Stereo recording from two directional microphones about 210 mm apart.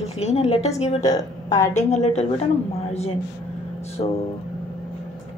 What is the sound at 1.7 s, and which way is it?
A woman's voice, 35° left (ahead or behind).